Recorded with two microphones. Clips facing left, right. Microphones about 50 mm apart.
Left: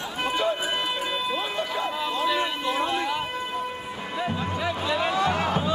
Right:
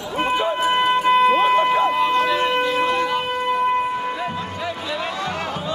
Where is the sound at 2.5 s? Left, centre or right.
Right.